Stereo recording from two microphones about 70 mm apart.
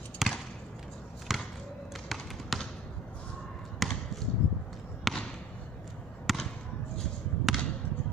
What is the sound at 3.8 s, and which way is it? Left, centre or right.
Basketball bounce, centre.